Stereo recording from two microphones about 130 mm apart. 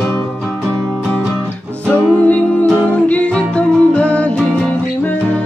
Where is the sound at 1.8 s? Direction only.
10° left (ahead or behind).